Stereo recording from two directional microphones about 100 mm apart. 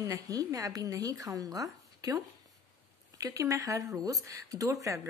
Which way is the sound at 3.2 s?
35° right (ahead or behind).